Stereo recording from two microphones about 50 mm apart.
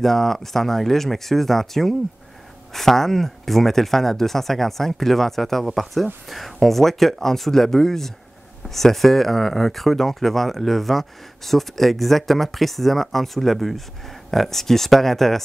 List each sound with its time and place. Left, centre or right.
0.0 s speech: centre